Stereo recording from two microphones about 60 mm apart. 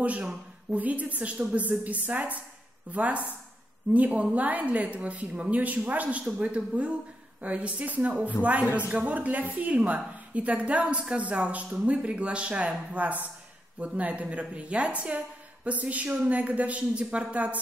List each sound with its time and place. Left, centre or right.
0.0 s a woman's voice: right